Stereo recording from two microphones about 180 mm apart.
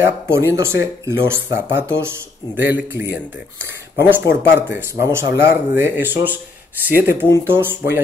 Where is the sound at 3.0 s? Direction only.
75° left (ahead or behind).